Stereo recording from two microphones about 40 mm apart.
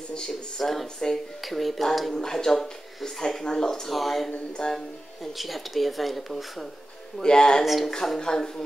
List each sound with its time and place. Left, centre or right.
0.6 s speech: centre
2.1 s speech: centre
3.9 s speech: centre
4.6 s speech: centre
5.2 s speech: centre
7.2 s speech: centre
7.6 s speech: centre
7.9 s speech: centre